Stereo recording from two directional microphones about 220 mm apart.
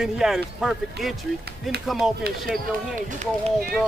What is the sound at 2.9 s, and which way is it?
Speech, 35° right (ahead or behind).